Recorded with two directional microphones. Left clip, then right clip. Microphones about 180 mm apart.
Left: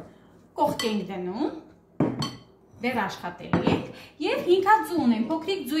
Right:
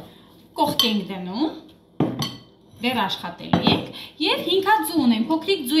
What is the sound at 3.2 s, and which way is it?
Cutlery, 35° left (ahead or behind).